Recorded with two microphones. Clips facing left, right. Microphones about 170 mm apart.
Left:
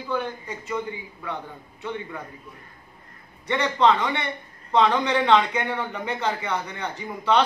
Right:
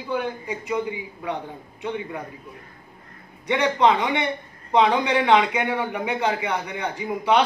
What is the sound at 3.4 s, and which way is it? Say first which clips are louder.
A man's voice: right 1 dB; 15° right (ahead or behind).